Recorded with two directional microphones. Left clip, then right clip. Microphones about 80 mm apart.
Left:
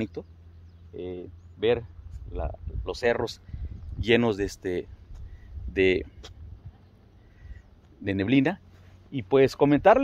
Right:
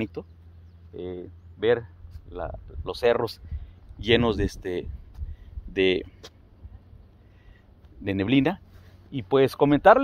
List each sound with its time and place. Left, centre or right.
0.0 s speech: left
0.9 s speech: centre
4.0 s speech: left
8.0 s speech: left